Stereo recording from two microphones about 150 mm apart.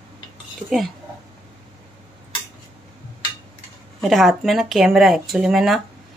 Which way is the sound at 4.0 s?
Centre (ahead or behind).